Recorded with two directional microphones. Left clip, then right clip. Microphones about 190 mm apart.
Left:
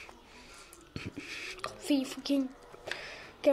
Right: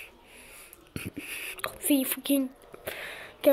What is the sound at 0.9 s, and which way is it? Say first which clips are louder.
Whispering: right 4 dB; 10° right (ahead or behind).